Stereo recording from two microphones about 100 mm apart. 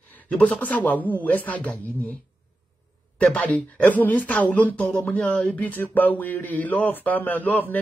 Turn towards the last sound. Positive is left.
turn(degrees=20)  # may be behind; listen again after turning